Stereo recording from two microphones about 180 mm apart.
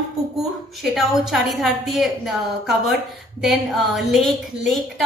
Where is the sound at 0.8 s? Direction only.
Centre (ahead or behind).